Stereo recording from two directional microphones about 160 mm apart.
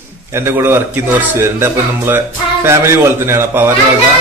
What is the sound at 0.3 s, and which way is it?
A man's voice, 15° right (ahead or behind).